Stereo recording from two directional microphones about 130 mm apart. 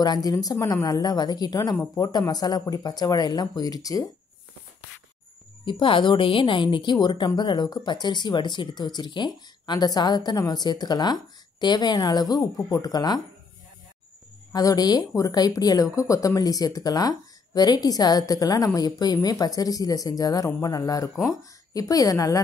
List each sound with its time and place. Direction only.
0.0 s a woman's voice: 30° left (ahead or behind)
5.7 s a woman's voice: 40° left (ahead or behind)
14.5 s speech: 30° left (ahead or behind)